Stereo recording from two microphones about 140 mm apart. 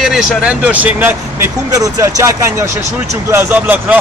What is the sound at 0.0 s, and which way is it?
Speech, 5° right (ahead or behind).